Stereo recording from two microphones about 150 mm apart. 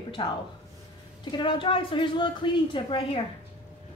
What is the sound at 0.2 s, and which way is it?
A woman's voice, 35° left (ahead or behind).